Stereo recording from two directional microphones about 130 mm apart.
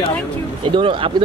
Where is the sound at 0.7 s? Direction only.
40° right (ahead or behind).